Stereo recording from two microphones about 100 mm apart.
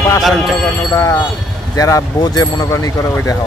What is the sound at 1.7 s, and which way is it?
Speech, 35° left (ahead or behind).